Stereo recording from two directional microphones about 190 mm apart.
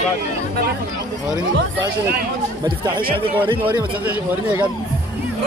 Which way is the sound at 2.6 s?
25° right (ahead or behind).